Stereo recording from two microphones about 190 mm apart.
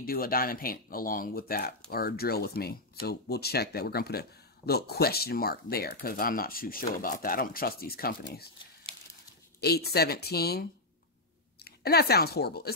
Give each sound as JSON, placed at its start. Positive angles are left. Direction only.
{"t": 0.0, "sound": "speech", "side_deg": 50}
{"t": 9.6, "sound": "speech", "side_deg": 55}